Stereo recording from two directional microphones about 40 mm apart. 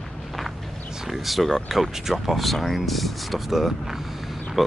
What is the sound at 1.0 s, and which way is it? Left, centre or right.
Speech, centre.